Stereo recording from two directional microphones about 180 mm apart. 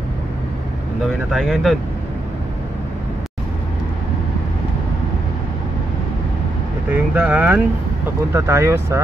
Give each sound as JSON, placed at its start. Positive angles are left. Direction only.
{"t": 1.0, "sound": "speech", "side_deg": 0}
{"t": 6.9, "sound": "speech", "side_deg": -10}